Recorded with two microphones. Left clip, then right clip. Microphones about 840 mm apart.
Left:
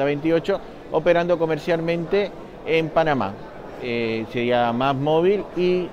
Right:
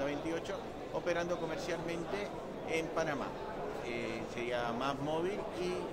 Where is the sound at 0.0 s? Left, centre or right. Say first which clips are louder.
Left 16 dB; left.